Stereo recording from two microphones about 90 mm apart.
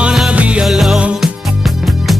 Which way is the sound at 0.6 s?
Centre (ahead or behind).